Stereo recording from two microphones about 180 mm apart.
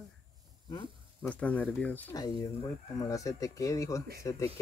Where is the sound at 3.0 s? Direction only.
20° left (ahead or behind).